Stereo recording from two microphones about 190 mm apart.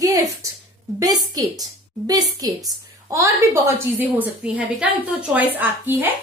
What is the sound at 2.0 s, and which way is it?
A woman's voice, 20° right (ahead or behind).